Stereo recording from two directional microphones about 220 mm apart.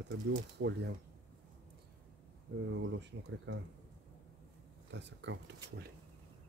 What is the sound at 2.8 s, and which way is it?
Speech, 55° right (ahead or behind).